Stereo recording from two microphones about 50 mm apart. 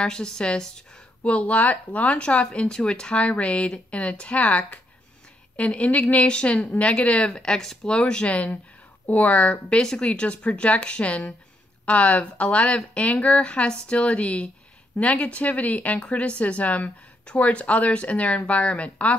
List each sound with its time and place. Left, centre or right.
0.0 s a woman's voice: centre
1.3 s speech: left; by 7.9 s centre
7.9 s speech: centre
13.0 s speech: left